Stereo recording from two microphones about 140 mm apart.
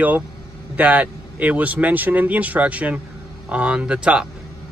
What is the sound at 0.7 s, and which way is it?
A man's voice, 10° right (ahead or behind).